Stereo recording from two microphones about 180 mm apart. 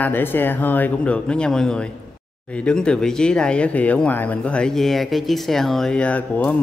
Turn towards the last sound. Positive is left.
turn(degrees=10)  # may be behind; listen again after turning